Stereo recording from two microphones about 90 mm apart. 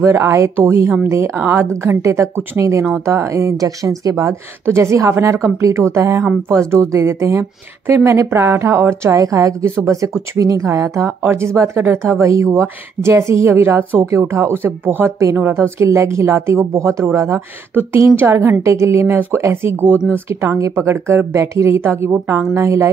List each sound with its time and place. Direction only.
0.0 s speech: 30° right (ahead or behind)